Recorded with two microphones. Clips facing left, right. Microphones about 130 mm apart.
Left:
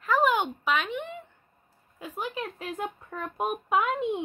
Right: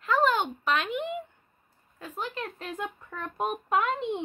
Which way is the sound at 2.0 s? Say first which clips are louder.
Left 1 dB; 10° left (ahead or behind).